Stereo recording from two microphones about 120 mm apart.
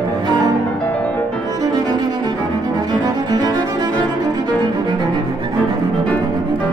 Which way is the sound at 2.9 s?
35° right (ahead or behind).